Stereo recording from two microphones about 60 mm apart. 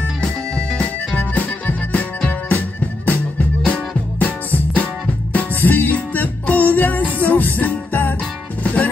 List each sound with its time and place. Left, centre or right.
0.2 s music: centre
1.3 s music: left